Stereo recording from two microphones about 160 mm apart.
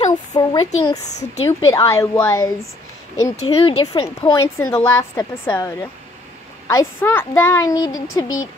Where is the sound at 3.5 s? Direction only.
35° left (ahead or behind).